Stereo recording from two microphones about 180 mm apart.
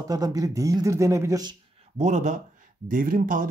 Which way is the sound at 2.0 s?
40° right (ahead or behind).